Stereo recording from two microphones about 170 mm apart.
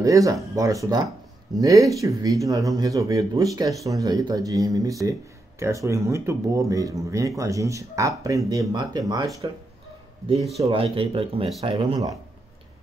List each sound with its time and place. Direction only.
0.0 s speech: 20° right (ahead or behind)
10.6 s speech: 30° right (ahead or behind)